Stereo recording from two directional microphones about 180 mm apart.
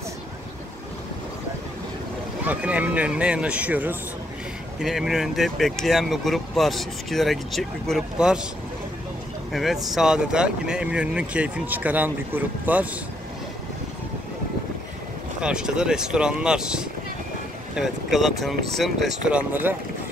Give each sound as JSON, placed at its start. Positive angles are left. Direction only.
{"t": 2.4, "sound": "speech", "side_deg": -5}
{"t": 9.5, "sound": "speech", "side_deg": 0}
{"t": 15.4, "sound": "speech", "side_deg": -5}